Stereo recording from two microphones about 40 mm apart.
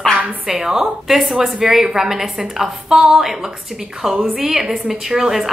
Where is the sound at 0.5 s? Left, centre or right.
Centre.